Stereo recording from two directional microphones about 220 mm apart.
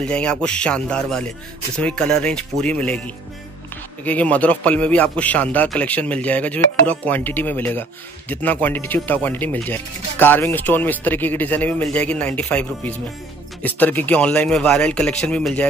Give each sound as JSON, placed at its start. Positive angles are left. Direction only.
{"t": 0.0, "sound": "speech", "side_deg": 5}
{"t": 4.0, "sound": "speech", "side_deg": 5}